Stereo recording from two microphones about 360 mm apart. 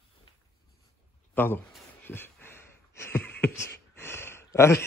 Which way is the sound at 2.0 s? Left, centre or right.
Centre.